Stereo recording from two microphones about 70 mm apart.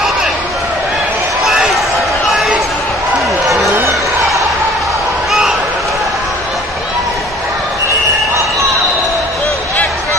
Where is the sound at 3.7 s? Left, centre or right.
Right.